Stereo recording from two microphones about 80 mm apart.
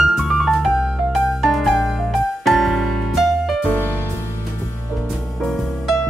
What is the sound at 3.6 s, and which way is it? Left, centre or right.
Music, centre.